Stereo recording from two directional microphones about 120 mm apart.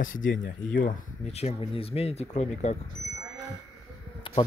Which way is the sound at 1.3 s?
55° left (ahead or behind).